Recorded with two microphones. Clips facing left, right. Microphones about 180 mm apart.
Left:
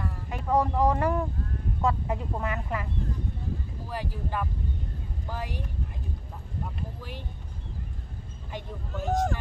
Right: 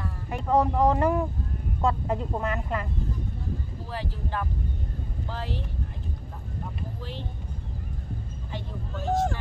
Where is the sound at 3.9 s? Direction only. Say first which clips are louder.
Even; 10° left (ahead or behind).